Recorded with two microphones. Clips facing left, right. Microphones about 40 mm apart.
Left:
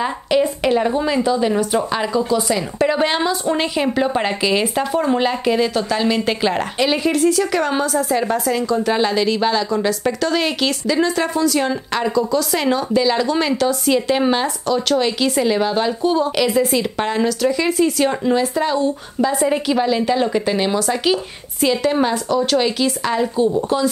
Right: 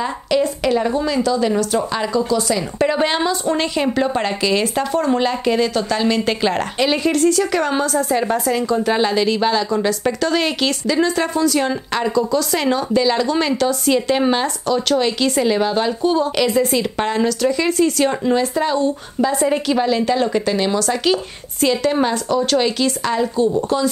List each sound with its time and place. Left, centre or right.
0.0 s speech: centre
2.8 s a woman's voice: centre